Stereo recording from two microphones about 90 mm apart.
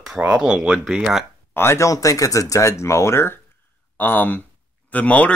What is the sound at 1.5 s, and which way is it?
Speech, 30° left (ahead or behind).